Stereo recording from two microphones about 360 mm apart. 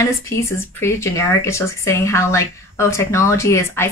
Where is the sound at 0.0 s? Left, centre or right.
Centre.